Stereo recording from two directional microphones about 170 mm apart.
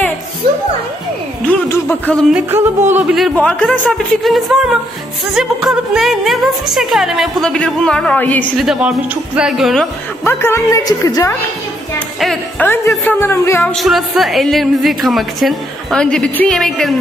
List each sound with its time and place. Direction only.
1.5 s a sound: 10° left (ahead or behind)
2.3 s music: 10° right (ahead or behind)
3.2 s speech: 5° left (ahead or behind)
8.5 s speech: 5° right (ahead or behind)
10.2 s a woman's voice: 15° left (ahead or behind)
12.2 s speech: centre (ahead or behind)
12.6 s speech: 15° left (ahead or behind)
13.7 s speech: centre (ahead or behind)